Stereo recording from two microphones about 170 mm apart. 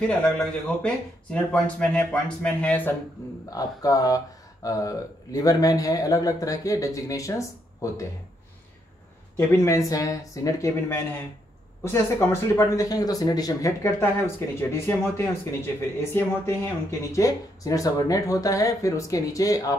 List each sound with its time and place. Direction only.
0.0 s speech: 5° left (ahead or behind)
3.4 s speech: 20° left (ahead or behind)
9.5 s speech: 20° left (ahead or behind)